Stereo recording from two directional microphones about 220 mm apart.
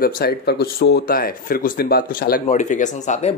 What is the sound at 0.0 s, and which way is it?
Speech, 45° left (ahead or behind).